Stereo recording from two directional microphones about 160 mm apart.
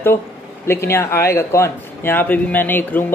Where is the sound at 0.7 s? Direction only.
15° left (ahead or behind).